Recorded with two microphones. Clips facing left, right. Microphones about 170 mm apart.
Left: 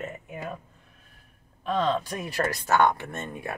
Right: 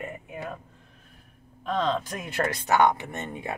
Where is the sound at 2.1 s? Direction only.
20° right (ahead or behind).